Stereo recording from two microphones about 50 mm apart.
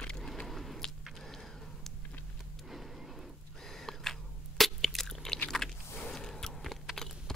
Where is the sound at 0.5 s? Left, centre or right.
Centre.